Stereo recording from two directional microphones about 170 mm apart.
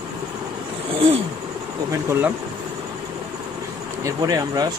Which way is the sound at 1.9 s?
15° right (ahead or behind).